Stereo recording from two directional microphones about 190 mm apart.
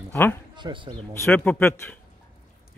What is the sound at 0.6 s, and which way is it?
Speech, 25° right (ahead or behind).